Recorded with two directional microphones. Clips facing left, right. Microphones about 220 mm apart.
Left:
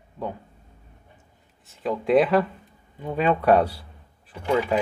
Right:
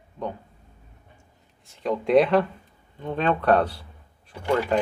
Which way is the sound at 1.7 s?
Centre (ahead or behind).